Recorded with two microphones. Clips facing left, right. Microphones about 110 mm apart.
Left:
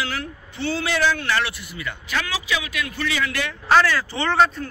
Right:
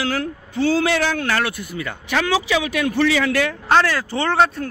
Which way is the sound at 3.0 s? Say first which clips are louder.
Right 8 dB; 80° right.